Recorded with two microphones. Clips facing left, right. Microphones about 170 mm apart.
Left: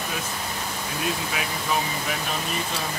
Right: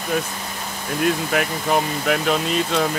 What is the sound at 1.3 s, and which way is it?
Speech, 55° right (ahead or behind).